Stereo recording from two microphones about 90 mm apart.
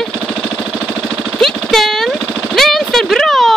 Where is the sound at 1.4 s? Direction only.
5° left (ahead or behind).